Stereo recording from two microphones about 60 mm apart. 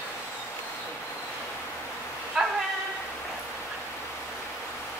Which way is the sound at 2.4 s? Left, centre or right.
Centre.